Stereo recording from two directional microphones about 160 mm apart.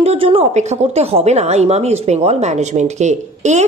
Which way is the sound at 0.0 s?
35° right (ahead or behind).